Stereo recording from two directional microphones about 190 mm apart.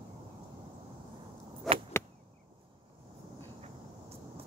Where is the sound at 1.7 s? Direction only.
Centre (ahead or behind).